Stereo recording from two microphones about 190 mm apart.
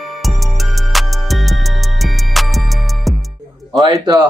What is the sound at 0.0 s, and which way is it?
Music, centre (ahead or behind).